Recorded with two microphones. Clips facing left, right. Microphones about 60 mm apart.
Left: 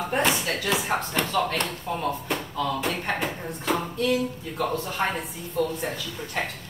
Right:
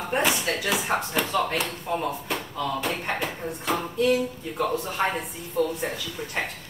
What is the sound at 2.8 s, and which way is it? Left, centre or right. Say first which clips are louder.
Speech: left 1 dB; centre.